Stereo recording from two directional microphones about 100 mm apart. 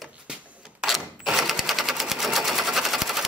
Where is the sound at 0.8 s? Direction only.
Centre (ahead or behind).